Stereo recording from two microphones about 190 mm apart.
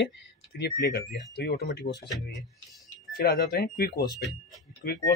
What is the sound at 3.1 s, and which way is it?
Speech, 50° left (ahead or behind).